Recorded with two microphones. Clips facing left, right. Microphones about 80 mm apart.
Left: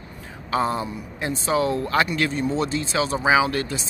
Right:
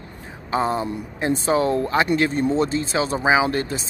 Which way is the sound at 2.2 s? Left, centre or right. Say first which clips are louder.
Right 3 dB; right.